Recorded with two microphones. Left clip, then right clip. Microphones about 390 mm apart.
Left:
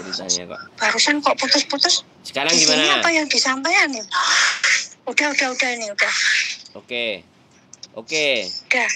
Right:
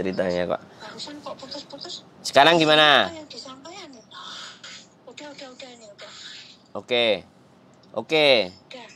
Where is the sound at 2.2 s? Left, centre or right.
Right.